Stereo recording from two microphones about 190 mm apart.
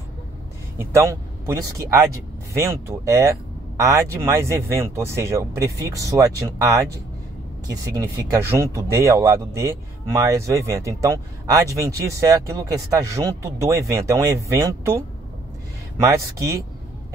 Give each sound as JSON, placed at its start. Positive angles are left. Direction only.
{"t": 0.7, "sound": "speech", "side_deg": -15}